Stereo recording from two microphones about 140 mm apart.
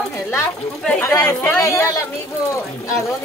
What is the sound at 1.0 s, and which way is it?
A man's voice, 20° left (ahead or behind).